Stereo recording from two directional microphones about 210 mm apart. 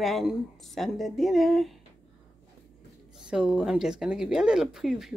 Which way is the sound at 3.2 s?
5° right (ahead or behind).